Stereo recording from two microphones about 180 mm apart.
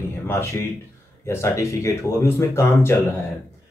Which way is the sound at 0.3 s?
15° left (ahead or behind).